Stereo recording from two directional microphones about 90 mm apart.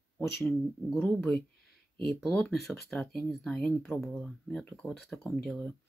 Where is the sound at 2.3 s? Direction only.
5° left (ahead or behind).